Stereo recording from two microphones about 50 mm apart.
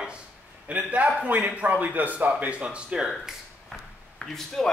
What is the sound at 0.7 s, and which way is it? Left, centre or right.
Speech, right.